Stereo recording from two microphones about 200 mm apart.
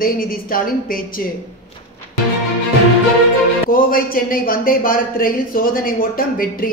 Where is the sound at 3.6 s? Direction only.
45° left (ahead or behind).